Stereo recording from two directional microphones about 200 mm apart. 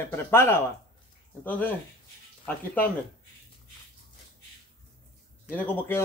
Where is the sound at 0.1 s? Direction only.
10° left (ahead or behind).